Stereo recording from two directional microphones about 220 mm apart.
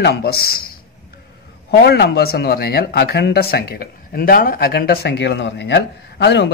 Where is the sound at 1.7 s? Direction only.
45° left (ahead or behind).